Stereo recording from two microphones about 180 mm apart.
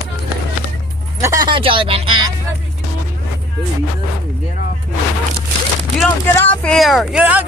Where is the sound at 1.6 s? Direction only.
30° right (ahead or behind).